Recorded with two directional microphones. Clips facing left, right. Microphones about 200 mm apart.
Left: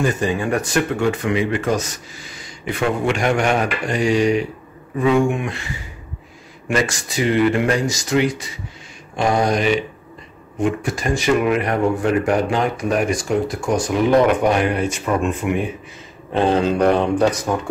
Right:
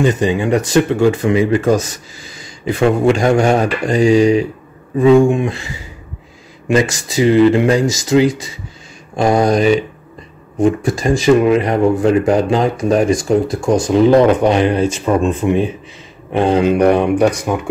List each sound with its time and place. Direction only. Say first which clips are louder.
0.0 s speech: right 5 dB; 20° right (ahead or behind)
5.0 s speech: right 7 dB; 30° right (ahead or behind)
6.7 s speech: right 6 dB; 25° right (ahead or behind)
9.1 s mantra: right 5 dB; 35° right (ahead or behind)
10.6 s speech: right 6 dB; 30° right (ahead or behind)
16.3 s speech: right 4 dB; 15° right (ahead or behind)